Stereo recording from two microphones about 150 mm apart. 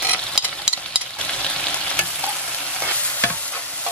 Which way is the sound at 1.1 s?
10° left (ahead or behind).